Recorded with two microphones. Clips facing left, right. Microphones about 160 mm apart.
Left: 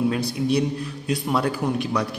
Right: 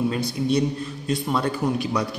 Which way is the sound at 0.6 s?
70° left (ahead or behind).